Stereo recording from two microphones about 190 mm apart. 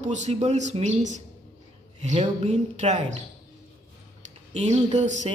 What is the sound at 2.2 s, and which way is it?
Speech, 35° right (ahead or behind).